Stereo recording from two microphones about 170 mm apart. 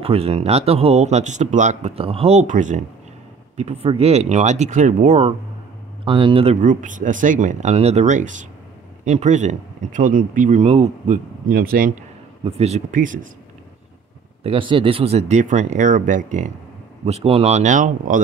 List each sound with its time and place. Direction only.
0.0 s speech: 35° right (ahead or behind)
6.0 s speech: 30° right (ahead or behind)
11.4 s speech: 55° right (ahead or behind)
12.4 s speech: 40° right (ahead or behind)
14.4 s speech: 30° right (ahead or behind); by 16.5 s 45° right (ahead or behind)
17.0 s speech: 35° right (ahead or behind)